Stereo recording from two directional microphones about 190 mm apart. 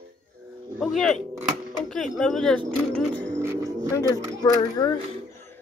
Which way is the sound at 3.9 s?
20° left (ahead or behind).